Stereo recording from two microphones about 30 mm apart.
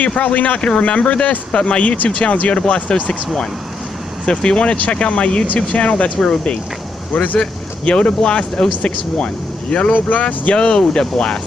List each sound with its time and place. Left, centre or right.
0.0 s speech: left
0.6 s speech: left
0.8 s speech: left
1.5 s speech: left
1.8 s speech: left
2.6 s speech: left
4.3 s speech: left
9.9 s speech: left
10.2 s speech: left